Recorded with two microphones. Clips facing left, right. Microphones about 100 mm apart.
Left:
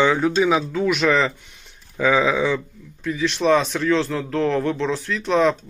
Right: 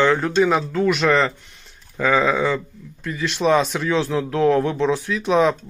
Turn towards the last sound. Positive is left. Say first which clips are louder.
# right 1 dB
turn(degrees=-5)  # may be behind; listen again after turning